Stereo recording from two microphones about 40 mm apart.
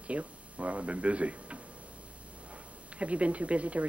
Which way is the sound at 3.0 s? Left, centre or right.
Right.